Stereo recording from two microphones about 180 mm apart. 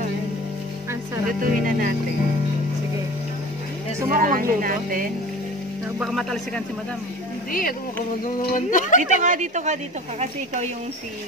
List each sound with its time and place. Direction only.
1.4 s speech: 50° right (ahead or behind)
4.1 s speech: 50° right (ahead or behind)
5.9 s speech: centre (ahead or behind)
8.4 s speech: 50° left (ahead or behind)
9.0 s a woman's voice: 45° right (ahead or behind)